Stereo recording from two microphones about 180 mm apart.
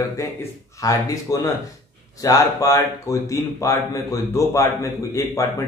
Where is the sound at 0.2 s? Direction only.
20° left (ahead or behind).